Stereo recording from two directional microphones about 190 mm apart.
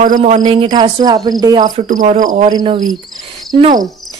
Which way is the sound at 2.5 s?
20° right (ahead or behind).